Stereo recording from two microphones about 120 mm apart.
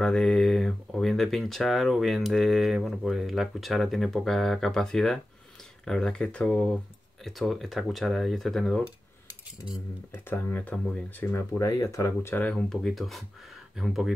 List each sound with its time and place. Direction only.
0.0 s speech: 5° left (ahead or behind)
10.1 s speech: 15° left (ahead or behind); by 14.1 s centre (ahead or behind)